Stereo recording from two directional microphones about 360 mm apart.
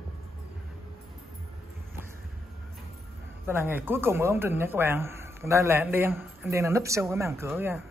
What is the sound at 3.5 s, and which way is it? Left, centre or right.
Speech, centre.